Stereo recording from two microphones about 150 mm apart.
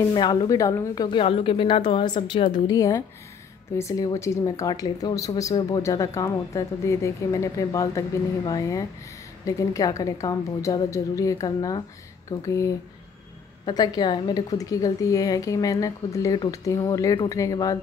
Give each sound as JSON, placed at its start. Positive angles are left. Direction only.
{"t": 0.0, "sound": "speech", "side_deg": 25}
{"t": 1.0, "sound": "a woman's voice", "side_deg": 35}